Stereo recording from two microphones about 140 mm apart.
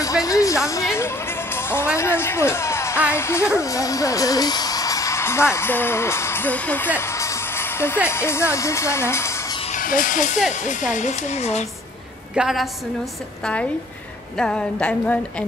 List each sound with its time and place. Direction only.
0.0 s music: 25° left (ahead or behind)
2.0 s speech: 15° left (ahead or behind)
3.1 s a sound: 20° left (ahead or behind)
3.5 s speech: 25° left (ahead or behind)
7.0 s music: 20° left (ahead or behind)
8.1 s speech: 20° left (ahead or behind)
9.7 s speech: 75° left (ahead or behind); by 11.6 s 55° left (ahead or behind)
12.4 s a woman's voice: 5° right (ahead or behind)
14.4 s a sound: 5° left (ahead or behind)